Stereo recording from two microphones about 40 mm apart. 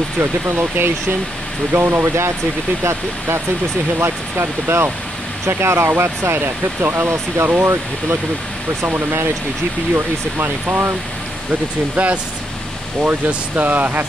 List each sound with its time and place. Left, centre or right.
0.2 s speech: right
1.7 s speech: right
4.0 s speech: right
8.8 s speech: right
11.9 s speech: right
13.6 s speech: right